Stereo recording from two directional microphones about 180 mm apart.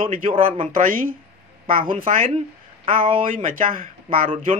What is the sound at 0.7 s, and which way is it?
Speech, 50° right (ahead or behind).